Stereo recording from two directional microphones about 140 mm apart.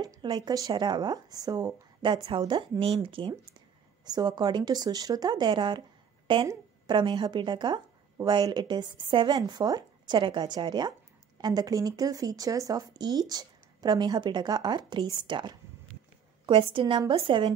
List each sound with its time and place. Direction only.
0.0 s speech: 30° right (ahead or behind)
6.4 s a woman's voice: 25° right (ahead or behind)
7.0 s speech: 35° right (ahead or behind)